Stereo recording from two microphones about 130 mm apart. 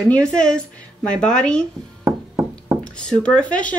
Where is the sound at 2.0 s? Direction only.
20° right (ahead or behind).